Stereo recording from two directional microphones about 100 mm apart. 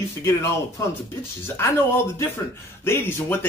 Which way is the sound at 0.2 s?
30° left (ahead or behind).